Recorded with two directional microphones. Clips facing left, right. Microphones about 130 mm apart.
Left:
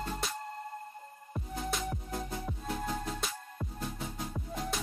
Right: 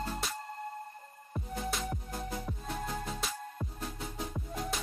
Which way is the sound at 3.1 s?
Centre (ahead or behind).